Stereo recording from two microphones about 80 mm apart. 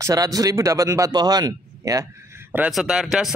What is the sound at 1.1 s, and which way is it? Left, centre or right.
Speech, right.